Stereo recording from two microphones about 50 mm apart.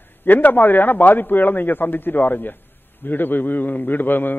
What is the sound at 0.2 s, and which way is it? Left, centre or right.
A man's voice, left.